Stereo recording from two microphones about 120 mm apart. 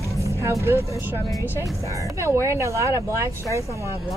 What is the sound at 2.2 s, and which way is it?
Speech, 25° right (ahead or behind).